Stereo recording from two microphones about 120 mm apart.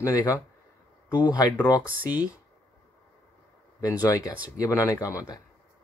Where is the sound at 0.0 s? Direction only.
25° left (ahead or behind).